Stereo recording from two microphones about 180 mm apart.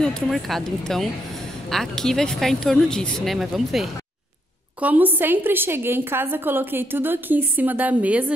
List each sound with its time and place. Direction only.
0.0 s a woman's voice: centre (ahead or behind)